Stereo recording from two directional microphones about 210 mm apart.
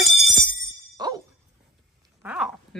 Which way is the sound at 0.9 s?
20° right (ahead or behind).